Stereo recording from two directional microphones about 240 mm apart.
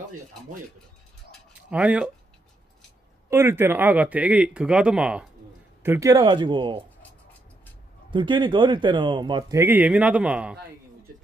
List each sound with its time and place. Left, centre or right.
1.7 s speech: centre
3.3 s speech: centre
8.1 s speech: centre